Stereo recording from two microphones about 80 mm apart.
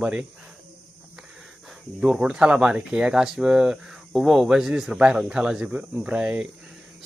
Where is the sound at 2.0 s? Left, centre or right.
Centre.